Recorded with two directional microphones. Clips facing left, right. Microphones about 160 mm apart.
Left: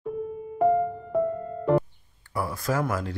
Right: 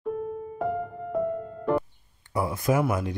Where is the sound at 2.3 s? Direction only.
20° right (ahead or behind).